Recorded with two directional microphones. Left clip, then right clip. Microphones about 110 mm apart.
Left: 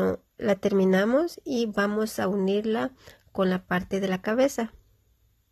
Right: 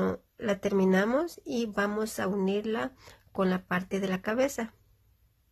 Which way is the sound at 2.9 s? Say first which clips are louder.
Left 3 dB; 35° left (ahead or behind).